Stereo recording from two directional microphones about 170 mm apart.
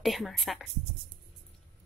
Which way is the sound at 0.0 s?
Centre (ahead or behind).